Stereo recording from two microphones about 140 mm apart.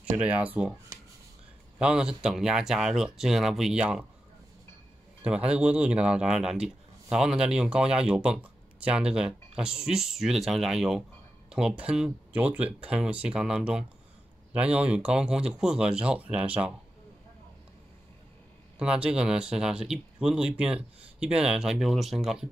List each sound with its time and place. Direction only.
0.2 s speech: 10° right (ahead or behind)
1.8 s speech: 5° right (ahead or behind)
5.2 s speech: 10° right (ahead or behind)
18.8 s speech: 5° right (ahead or behind)